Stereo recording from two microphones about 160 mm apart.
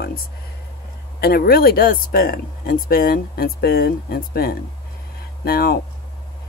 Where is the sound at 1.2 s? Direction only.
70° left (ahead or behind).